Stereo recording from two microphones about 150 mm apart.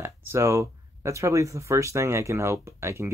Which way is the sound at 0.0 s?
15° right (ahead or behind).